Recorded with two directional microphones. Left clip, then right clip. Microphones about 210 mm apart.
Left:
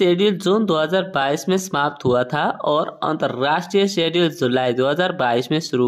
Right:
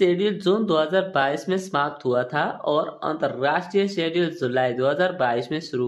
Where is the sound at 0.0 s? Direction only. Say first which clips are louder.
Left 3 dB; 25° left (ahead or behind).